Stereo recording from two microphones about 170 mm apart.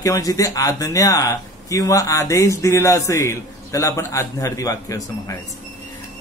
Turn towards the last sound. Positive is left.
turn(degrees=20)  # may be behind; listen again after turning